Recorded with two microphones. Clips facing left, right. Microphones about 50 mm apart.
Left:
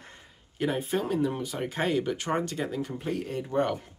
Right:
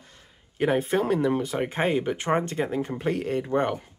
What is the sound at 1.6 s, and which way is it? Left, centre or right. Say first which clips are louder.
Speech: left 1 dB; right.